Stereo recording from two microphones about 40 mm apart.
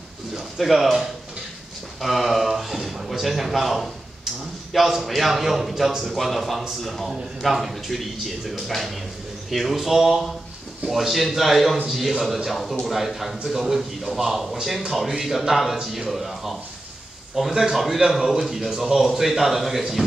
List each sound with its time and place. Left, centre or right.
0.3 s speech: centre
2.0 s a man's voice: centre